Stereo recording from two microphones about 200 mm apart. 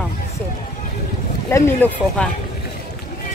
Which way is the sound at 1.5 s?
10° left (ahead or behind).